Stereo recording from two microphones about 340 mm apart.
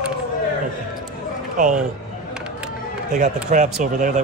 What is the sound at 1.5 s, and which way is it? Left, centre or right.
Speech, right.